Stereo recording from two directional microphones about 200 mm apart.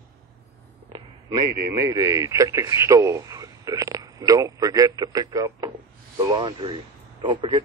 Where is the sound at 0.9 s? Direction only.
20° right (ahead or behind).